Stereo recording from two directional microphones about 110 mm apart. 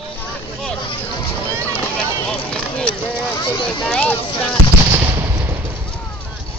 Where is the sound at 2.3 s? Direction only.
10° left (ahead or behind).